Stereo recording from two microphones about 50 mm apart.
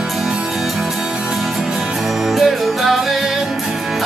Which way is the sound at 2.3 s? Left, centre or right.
Centre.